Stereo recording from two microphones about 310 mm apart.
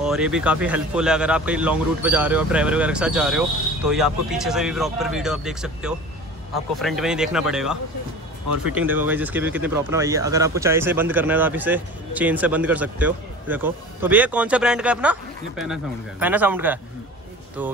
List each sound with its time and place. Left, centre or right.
0.0 s speech: centre